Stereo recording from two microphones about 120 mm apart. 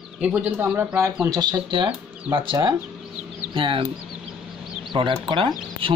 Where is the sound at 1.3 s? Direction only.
35° right (ahead or behind).